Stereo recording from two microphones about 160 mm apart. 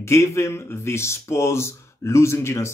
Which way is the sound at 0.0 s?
15° left (ahead or behind).